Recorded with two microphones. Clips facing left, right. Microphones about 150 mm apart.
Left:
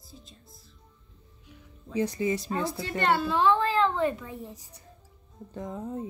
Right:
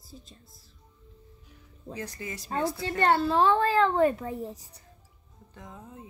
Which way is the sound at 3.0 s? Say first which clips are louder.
Right 2 dB; 40° right (ahead or behind).